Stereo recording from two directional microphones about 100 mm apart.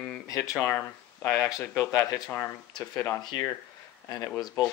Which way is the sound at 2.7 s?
40° left (ahead or behind).